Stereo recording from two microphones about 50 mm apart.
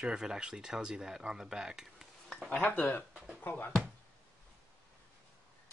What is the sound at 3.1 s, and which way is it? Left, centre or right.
Music, right.